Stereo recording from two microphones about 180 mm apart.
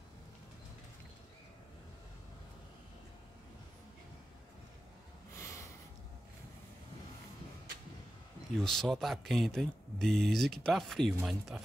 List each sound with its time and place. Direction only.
5.3 s snort: 15° left (ahead or behind)
8.6 s speech: centre (ahead or behind)